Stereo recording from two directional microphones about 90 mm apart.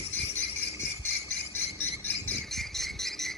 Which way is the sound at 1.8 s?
20° left (ahead or behind).